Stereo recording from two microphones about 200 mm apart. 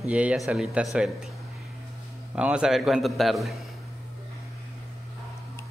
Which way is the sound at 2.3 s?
5° right (ahead or behind).